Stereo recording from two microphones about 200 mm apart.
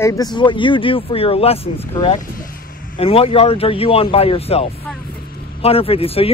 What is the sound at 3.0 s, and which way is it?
Speech, 30° left (ahead or behind).